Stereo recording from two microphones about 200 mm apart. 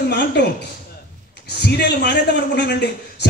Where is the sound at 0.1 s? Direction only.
55° left (ahead or behind).